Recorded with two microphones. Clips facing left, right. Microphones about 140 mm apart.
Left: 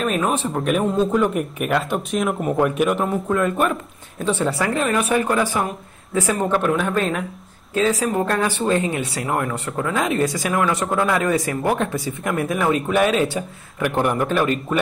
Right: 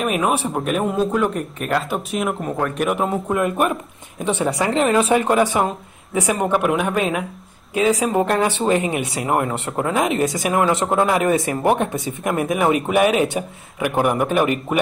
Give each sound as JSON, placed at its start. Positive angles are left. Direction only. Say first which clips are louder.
{"t": 0.0, "sound": "speech", "louder": "right 1 dB", "side_deg": -10}
{"t": 3.0, "sound": "speech", "louder": "even", "side_deg": -20}